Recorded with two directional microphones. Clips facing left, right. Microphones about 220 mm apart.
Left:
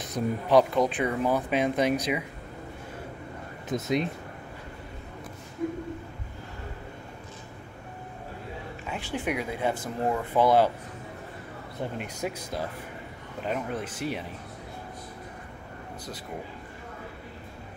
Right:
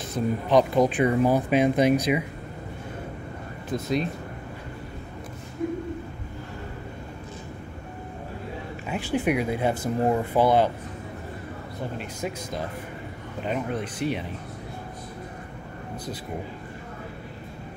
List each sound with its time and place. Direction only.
0.1 s speech: 10° left (ahead or behind)
0.7 s speech: 10° right (ahead or behind)
3.7 s speech: 20° left (ahead or behind)
8.8 s speech: 10° right (ahead or behind)
10.0 s speech: 25° right (ahead or behind)
10.4 s speech: 5° left (ahead or behind)
12.0 s speech: 10° left (ahead or behind)